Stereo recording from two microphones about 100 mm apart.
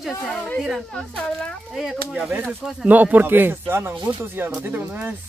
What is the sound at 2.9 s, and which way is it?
Speech, 15° right (ahead or behind).